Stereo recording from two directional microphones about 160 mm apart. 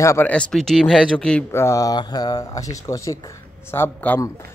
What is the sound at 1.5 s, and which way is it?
Speech, 20° left (ahead or behind).